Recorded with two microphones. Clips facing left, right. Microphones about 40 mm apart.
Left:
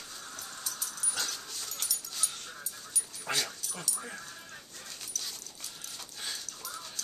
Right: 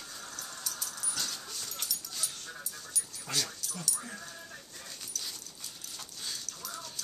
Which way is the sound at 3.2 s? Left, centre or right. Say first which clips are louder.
Left 2 dB; left.